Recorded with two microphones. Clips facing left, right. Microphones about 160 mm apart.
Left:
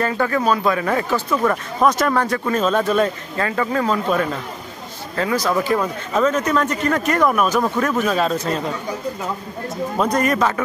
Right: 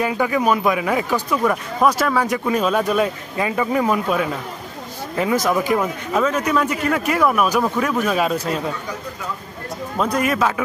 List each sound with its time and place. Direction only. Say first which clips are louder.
0.0 s speech: even; 10° right (ahead or behind)
5.1 s speech: right 1 dB; 20° right (ahead or behind)
10.0 s speech: even; 5° right (ahead or behind)